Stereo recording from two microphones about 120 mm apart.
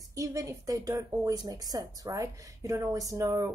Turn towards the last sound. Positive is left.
turn(degrees=-30)  # may be behind; listen again after turning